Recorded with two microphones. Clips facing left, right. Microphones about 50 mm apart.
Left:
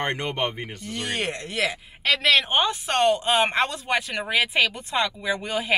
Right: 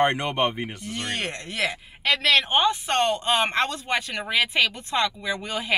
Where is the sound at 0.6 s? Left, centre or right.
Centre.